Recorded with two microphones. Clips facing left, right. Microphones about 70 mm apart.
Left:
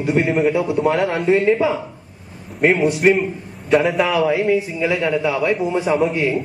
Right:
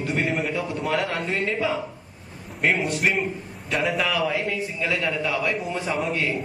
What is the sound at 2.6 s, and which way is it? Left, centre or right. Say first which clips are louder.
A man's voice: left 8 dB; centre.